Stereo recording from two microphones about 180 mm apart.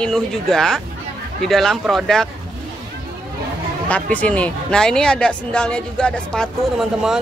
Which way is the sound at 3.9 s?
10° left (ahead or behind).